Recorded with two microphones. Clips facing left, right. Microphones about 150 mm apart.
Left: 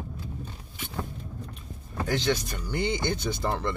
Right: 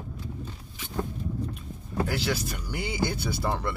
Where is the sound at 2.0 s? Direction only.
10° right (ahead or behind).